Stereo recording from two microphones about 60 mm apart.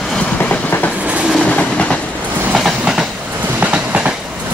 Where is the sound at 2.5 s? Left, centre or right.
Centre.